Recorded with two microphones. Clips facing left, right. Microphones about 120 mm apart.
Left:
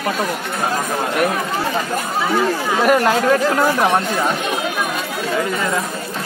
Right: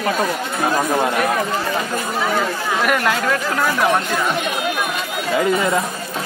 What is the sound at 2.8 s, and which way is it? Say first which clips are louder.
Speech: left 5 dB; 35° left (ahead or behind).